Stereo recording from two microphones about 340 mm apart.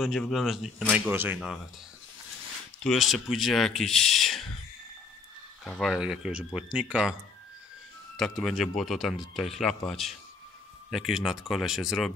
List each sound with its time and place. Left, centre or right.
0.0 s speech: centre
2.8 s speech: centre
5.6 s speech: centre
8.2 s speech: centre